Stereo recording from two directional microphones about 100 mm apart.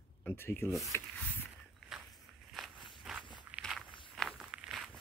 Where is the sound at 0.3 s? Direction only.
25° left (ahead or behind).